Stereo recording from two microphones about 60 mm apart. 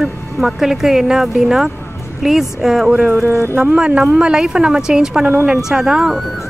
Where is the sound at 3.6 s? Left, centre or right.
Centre.